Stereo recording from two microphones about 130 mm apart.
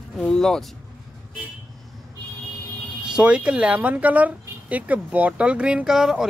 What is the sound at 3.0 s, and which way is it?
Speech, 5° right (ahead or behind).